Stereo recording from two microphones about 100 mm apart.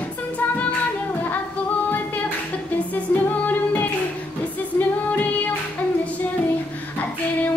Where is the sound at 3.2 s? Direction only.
15° left (ahead or behind).